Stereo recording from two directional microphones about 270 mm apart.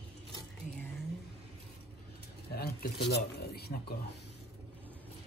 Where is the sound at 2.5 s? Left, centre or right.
Left.